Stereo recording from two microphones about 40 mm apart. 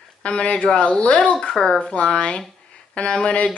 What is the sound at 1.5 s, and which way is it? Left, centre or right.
Speech, centre.